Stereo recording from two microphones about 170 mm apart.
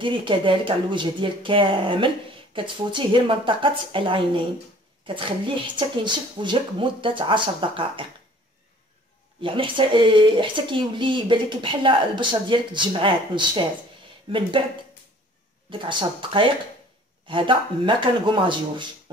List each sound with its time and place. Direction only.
0.0 s speech: 30° right (ahead or behind)
9.4 s speech: 30° right (ahead or behind)
15.7 s speech: 30° right (ahead or behind)